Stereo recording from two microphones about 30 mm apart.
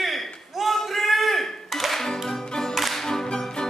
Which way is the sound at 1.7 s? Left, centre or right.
Centre.